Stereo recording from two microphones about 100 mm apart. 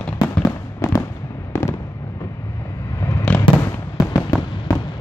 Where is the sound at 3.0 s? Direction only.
25° left (ahead or behind).